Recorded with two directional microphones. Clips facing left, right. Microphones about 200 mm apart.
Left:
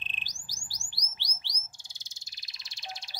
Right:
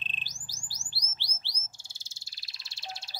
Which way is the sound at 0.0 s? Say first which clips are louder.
Right 1 dB; 15° left (ahead or behind).